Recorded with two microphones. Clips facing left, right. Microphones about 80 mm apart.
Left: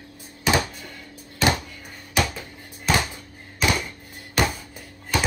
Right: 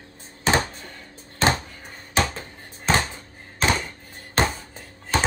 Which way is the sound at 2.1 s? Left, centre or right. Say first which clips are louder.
Right 1 dB; right.